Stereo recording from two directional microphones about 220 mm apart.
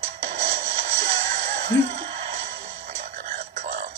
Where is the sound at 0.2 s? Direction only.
30° right (ahead or behind).